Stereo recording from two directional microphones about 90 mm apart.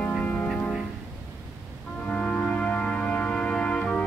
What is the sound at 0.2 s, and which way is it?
Music, 20° left (ahead or behind).